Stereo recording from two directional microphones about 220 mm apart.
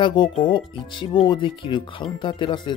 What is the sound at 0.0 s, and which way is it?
Speech, 20° left (ahead or behind).